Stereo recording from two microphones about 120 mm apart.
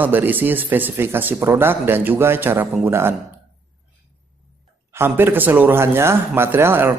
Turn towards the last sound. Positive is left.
turn(degrees=-20)  # may be behind; listen again after turning